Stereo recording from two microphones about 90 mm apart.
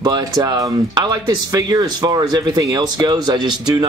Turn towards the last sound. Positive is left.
turn(degrees=-55)  # may be behind; listen again after turning